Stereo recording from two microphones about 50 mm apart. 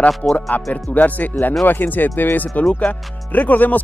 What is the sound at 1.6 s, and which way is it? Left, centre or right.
Speech, left.